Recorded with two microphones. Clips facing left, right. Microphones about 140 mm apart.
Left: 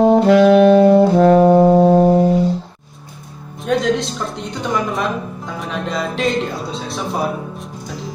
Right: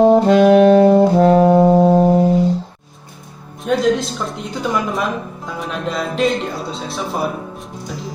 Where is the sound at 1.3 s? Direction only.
5° right (ahead or behind).